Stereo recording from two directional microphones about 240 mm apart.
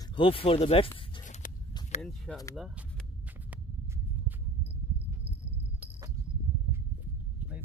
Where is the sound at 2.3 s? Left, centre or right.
Centre.